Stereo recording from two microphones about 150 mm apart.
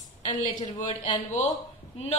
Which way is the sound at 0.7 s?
55° left (ahead or behind).